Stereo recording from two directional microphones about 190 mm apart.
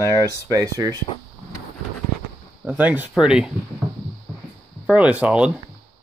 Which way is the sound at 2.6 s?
10° right (ahead or behind).